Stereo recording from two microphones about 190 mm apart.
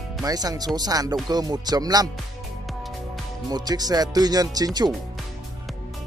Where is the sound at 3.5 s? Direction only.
20° right (ahead or behind).